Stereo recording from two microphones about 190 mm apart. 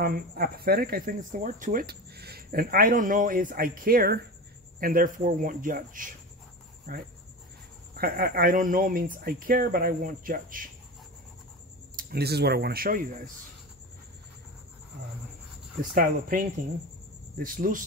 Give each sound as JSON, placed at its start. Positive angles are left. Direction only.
{"t": 0.0, "sound": "speech", "side_deg": -55}
{"t": 12.0, "sound": "speech", "side_deg": -55}
{"t": 15.8, "sound": "speech", "side_deg": -50}